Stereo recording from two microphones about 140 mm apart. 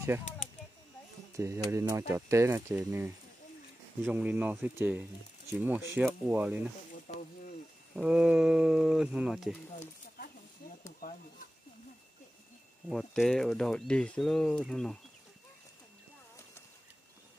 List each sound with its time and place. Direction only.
1.3 s speech: 20° right (ahead or behind)
7.1 s a sound: 55° left (ahead or behind)
7.9 s speech: 5° right (ahead or behind)
12.9 s speech: 5° left (ahead or behind)